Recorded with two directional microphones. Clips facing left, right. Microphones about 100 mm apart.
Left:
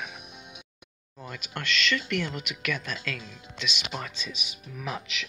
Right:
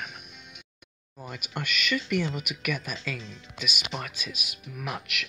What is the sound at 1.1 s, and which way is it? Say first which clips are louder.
Speech: right 1 dB; 10° right (ahead or behind).